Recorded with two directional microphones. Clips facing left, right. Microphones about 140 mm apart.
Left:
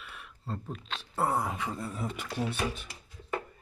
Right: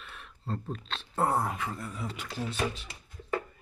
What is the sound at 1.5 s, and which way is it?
Speech, 20° left (ahead or behind).